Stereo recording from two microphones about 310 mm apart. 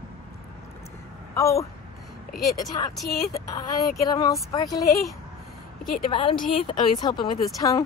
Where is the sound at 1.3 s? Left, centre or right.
Centre.